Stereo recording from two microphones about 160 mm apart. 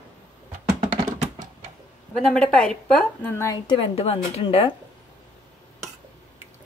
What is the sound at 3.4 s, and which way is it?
A woman's voice, 30° left (ahead or behind).